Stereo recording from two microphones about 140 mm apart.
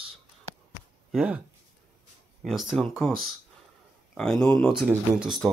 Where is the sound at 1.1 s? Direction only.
5° right (ahead or behind).